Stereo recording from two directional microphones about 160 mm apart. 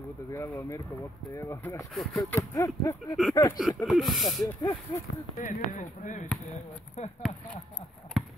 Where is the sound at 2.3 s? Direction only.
20° left (ahead or behind).